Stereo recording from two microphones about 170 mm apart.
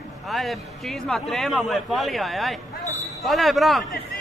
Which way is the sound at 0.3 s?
Centre (ahead or behind).